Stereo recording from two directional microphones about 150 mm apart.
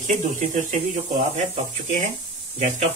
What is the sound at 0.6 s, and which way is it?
Speech, 55° right (ahead or behind).